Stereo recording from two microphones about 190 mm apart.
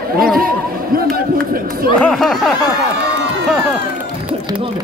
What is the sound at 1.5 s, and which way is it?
Speech, 50° right (ahead or behind).